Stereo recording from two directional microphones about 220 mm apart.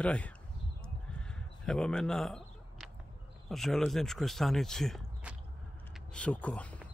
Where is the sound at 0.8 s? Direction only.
5° left (ahead or behind).